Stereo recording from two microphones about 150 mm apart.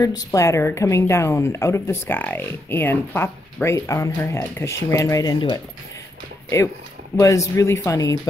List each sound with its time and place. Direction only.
0.0 s a woman's voice: 25° left (ahead or behind)
7.2 s a woman's voice: 20° left (ahead or behind)